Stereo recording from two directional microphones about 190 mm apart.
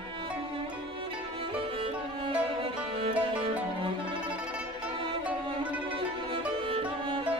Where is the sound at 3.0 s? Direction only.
25° right (ahead or behind).